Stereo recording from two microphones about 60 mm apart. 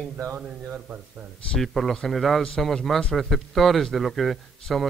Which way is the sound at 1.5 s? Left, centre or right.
Centre.